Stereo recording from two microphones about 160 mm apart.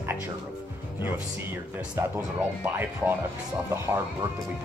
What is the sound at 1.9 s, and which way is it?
Speech, 15° right (ahead or behind).